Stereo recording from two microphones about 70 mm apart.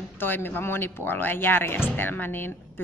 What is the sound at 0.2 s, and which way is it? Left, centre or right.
A woman's voice, left.